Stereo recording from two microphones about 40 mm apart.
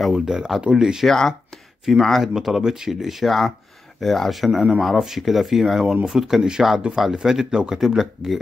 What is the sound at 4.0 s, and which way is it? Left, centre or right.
Speech, centre.